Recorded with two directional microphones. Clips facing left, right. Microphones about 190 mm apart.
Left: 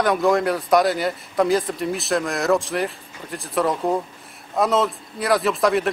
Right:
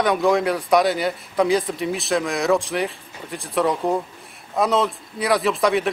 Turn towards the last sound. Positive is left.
turn(degrees=0)  # may be behind; listen again after turning